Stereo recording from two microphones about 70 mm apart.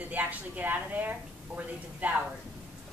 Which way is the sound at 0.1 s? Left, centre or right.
Right.